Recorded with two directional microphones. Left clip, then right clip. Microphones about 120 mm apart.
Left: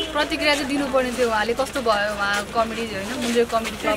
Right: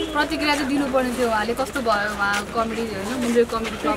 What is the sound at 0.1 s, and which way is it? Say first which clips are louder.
Speech: left 1 dB; centre (ahead or behind).